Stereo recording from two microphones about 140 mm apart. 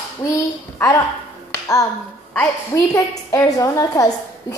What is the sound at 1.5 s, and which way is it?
Finger snapping, 25° left (ahead or behind).